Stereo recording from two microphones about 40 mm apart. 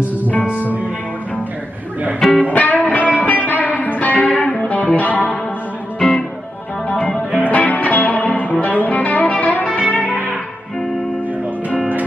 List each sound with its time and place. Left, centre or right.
0.3 s music: left
2.5 s music: left
5.9 s music: centre
7.0 s music: left